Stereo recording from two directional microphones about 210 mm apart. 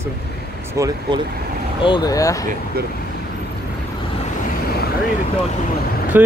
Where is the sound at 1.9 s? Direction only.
20° left (ahead or behind).